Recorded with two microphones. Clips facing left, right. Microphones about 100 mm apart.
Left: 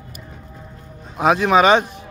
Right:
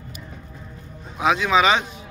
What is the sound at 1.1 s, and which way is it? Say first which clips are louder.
Speech: left 4 dB; 45° left (ahead or behind).